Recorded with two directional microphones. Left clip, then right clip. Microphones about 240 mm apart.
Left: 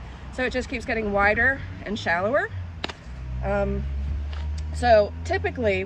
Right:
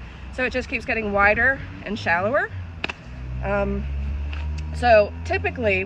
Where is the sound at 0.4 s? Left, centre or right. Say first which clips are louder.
Right 2 dB; centre.